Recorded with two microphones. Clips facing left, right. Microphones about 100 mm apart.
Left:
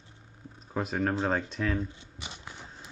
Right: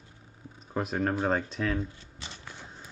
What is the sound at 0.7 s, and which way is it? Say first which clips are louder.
Speech: even; centre (ahead or behind).